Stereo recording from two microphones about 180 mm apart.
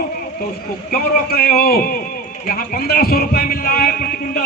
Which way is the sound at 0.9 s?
60° left (ahead or behind).